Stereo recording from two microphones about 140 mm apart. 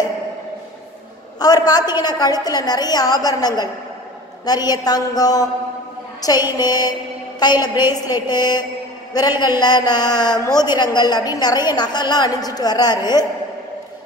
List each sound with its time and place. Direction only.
1.4 s a woman's voice: 25° left (ahead or behind)